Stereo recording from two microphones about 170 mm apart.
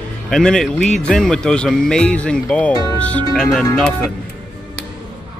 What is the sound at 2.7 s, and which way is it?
Speech, 20° left (ahead or behind).